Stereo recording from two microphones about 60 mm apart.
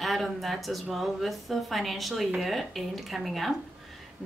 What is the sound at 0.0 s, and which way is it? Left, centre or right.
A woman's voice, centre.